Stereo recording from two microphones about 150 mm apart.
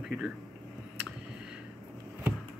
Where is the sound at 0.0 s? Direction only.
5° right (ahead or behind).